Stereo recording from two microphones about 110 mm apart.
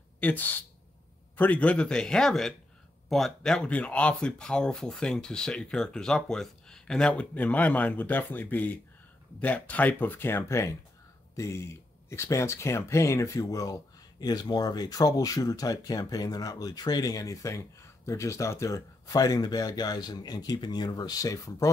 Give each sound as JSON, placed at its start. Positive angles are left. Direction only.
{"t": 0.2, "sound": "speech", "side_deg": 15}